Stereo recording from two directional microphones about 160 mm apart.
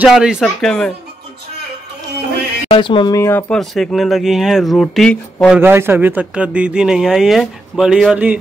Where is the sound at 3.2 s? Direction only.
15° left (ahead or behind).